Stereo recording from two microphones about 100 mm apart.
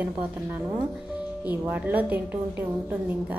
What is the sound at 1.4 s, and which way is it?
Speech, 15° right (ahead or behind).